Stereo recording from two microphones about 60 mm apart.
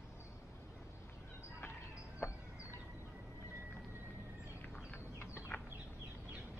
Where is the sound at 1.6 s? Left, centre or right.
Left.